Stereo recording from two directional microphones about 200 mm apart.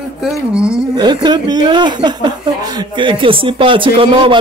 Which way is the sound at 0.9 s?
20° right (ahead or behind).